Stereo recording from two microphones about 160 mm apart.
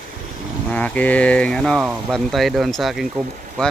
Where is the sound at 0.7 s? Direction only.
10° left (ahead or behind).